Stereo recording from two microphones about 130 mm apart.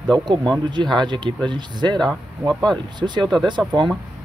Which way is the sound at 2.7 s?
35° right (ahead or behind).